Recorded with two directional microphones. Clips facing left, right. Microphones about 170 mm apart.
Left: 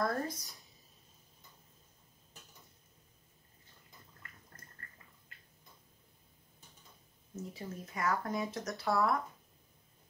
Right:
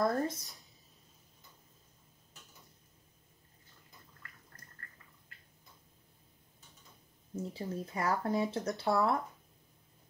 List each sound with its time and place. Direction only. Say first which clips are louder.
0.0 s speech: right 3 dB; 25° right (ahead or behind)
7.5 s speech: right 6 dB; 30° right (ahead or behind)